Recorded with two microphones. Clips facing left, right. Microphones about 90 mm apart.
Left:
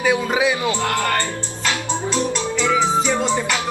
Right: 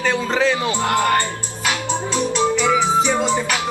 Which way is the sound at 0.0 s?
10° left (ahead or behind).